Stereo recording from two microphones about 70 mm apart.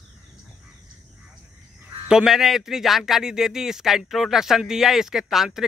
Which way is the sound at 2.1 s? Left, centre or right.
Centre.